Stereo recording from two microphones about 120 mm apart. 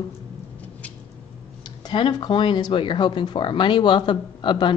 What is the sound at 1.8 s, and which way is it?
Speech, 40° left (ahead or behind).